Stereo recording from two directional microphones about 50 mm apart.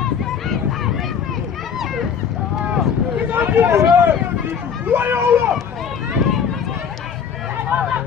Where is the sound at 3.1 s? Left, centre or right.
Right.